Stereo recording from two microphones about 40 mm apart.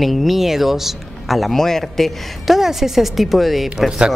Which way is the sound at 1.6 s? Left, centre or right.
Centre.